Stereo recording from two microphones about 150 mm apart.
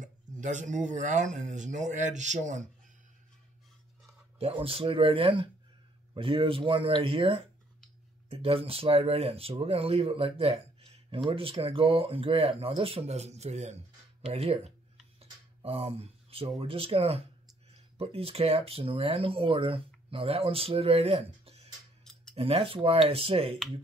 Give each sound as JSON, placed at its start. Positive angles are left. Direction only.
{"t": 0.0, "sound": "speech", "side_deg": -55}
{"t": 4.4, "sound": "speech", "side_deg": -40}